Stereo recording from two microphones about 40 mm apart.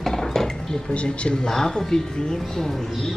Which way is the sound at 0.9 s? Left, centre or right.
Left.